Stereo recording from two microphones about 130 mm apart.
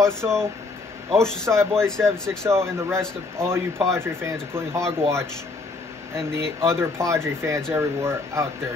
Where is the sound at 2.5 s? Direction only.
20° right (ahead or behind).